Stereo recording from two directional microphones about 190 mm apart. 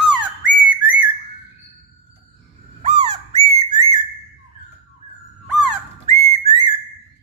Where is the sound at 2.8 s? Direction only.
35° right (ahead or behind).